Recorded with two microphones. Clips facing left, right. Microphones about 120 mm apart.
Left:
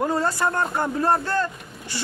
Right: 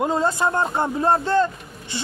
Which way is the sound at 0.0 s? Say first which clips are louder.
Right 2 dB; 20° right (ahead or behind).